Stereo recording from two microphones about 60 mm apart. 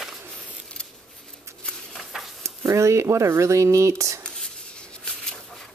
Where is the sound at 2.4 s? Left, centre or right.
Right.